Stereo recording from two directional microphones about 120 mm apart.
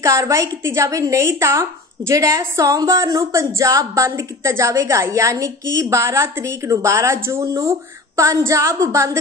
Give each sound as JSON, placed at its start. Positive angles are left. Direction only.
{"t": 0.0, "sound": "a woman's voice", "side_deg": -25}